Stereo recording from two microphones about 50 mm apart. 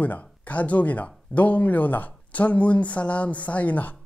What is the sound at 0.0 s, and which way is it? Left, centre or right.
Speech, left.